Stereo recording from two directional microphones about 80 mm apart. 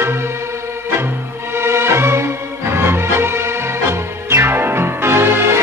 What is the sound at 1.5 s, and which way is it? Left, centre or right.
Music, right.